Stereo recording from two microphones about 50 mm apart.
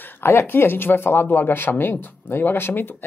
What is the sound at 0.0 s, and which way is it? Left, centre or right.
Speech, left.